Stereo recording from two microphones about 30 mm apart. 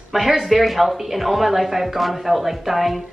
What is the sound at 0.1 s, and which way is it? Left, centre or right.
A woman's voice, centre.